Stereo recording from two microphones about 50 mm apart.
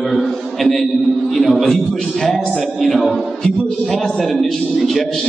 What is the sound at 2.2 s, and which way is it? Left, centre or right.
A man's voice, centre.